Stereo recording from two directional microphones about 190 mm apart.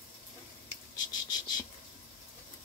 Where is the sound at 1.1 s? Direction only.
20° left (ahead or behind).